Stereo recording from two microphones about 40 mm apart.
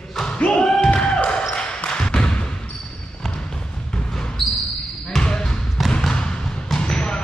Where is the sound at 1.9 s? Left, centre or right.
Centre.